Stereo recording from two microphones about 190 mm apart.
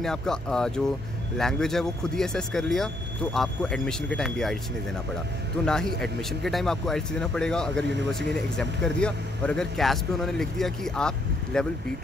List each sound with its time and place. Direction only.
0.0 s speech: 5° left (ahead or behind)
5.9 s speech: centre (ahead or behind)